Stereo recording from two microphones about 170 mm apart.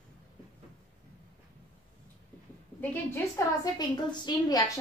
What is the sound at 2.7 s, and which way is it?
Speech, 10° left (ahead or behind).